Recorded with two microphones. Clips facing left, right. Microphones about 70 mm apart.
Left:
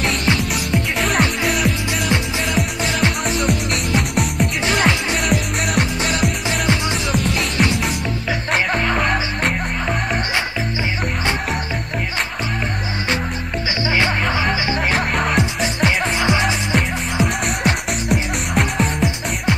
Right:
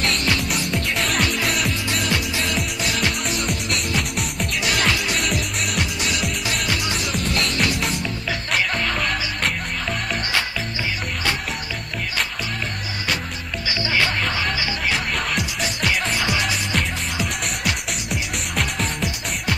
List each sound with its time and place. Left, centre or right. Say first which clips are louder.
0.0 s music: left 3 dB; centre
2.0 s music: left 5 dB; left
4.6 s music: left 4 dB; left
5.3 s music: left 5 dB; left
7.2 s music: left 2 dB; centre
8.7 s music: left 5 dB; centre
13.8 s music: left 3 dB; left
14.9 s music: left 4 dB; left
15.3 s music: left 6 dB; left
18.1 s music: left 6 dB; left